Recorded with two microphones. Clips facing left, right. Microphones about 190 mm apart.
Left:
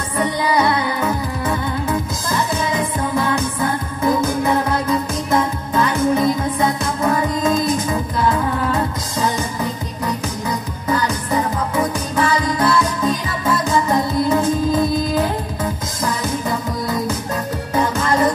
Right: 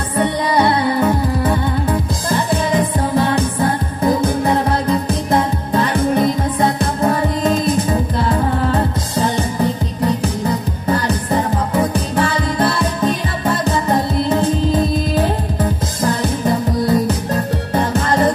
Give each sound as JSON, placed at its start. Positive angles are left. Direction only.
{"t": 0.2, "sound": "music", "side_deg": -30}
{"t": 7.0, "sound": "music", "side_deg": -35}
{"t": 11.1, "sound": "music", "side_deg": -30}